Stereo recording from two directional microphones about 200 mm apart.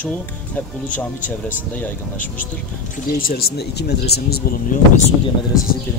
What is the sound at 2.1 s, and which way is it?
Speech, 40° left (ahead or behind).